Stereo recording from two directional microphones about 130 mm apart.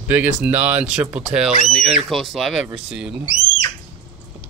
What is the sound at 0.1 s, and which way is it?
Speech, 10° right (ahead or behind).